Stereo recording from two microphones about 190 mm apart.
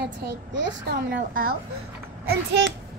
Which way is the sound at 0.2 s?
65° right (ahead or behind).